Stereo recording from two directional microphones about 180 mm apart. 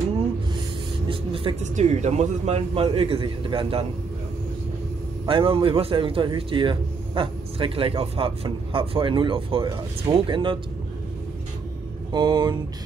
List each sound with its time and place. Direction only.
1.0 s speech: 30° right (ahead or behind)
5.3 s speech: 30° right (ahead or behind)
12.1 s speech: 25° right (ahead or behind)